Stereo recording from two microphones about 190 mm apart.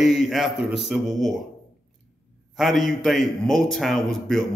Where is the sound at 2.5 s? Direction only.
Centre (ahead or behind).